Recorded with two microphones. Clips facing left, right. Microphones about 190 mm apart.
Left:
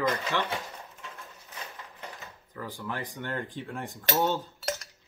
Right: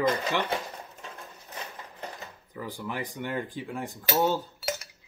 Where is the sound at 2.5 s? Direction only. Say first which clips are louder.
Right 1 dB; 15° right (ahead or behind).